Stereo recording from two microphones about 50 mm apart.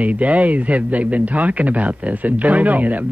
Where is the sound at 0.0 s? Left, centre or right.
Right.